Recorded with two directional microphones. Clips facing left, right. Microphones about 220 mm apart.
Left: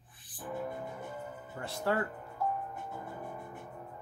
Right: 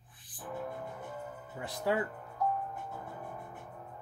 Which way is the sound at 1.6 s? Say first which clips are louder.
Even; 15° right (ahead or behind).